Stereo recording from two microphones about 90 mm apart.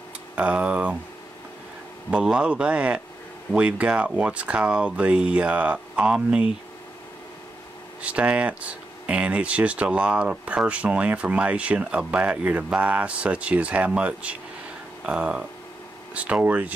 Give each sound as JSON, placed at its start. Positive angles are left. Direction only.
{"t": 0.4, "sound": "speech", "side_deg": -15}
{"t": 2.0, "sound": "speech", "side_deg": -10}
{"t": 8.0, "sound": "speech", "side_deg": -15}